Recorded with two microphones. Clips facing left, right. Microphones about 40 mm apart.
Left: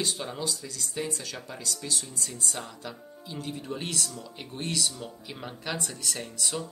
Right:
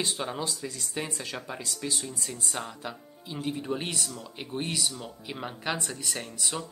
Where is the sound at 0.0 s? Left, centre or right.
Right.